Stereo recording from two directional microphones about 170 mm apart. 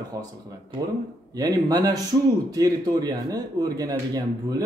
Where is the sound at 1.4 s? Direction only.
20° right (ahead or behind).